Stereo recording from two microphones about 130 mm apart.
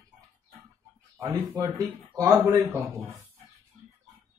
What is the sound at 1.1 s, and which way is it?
Speech, 20° right (ahead or behind).